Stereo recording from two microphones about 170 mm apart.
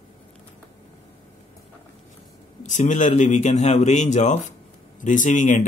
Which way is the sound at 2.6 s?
45° left (ahead or behind).